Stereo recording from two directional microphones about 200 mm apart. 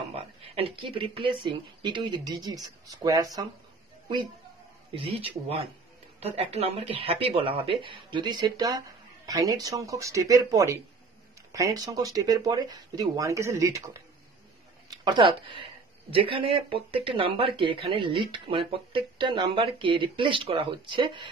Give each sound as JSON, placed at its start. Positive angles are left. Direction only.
{"t": 0.1, "sound": "speech", "side_deg": -25}
{"t": 6.1, "sound": "speech", "side_deg": -30}
{"t": 14.9, "sound": "a sound", "side_deg": -20}
{"t": 16.1, "sound": "speech", "side_deg": -25}